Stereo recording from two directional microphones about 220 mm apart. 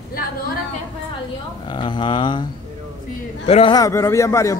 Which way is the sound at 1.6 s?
20° left (ahead or behind).